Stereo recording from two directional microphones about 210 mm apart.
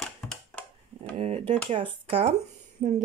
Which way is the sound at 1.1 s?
25° right (ahead or behind).